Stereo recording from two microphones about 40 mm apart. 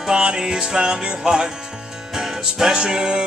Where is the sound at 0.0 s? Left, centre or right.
Centre.